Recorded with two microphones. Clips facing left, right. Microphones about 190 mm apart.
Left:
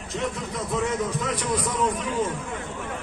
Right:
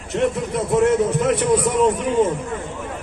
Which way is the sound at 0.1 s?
65° right (ahead or behind).